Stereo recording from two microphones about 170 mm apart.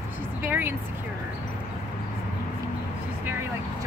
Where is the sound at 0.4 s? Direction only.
10° right (ahead or behind).